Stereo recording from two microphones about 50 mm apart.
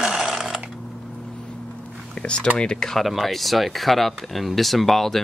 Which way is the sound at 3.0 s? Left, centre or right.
Centre.